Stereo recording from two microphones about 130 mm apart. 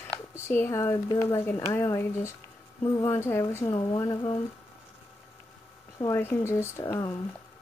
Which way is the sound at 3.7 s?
35° left (ahead or behind).